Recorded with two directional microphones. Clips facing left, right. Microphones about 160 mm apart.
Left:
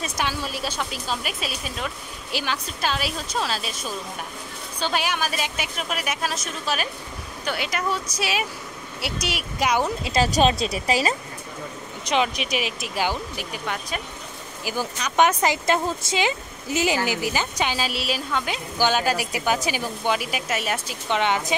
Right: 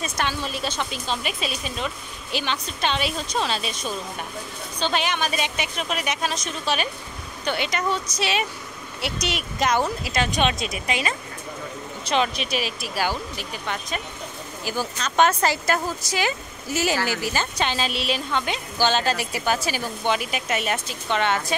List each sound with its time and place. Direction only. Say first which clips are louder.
0.2 s a woman's voice: right 1 dB; 10° left (ahead or behind)
10.0 s speech: left 3 dB; 35° left (ahead or behind)
12.0 s a woman's voice: even; 15° left (ahead or behind)
21.1 s a woman's voice: even; 15° left (ahead or behind)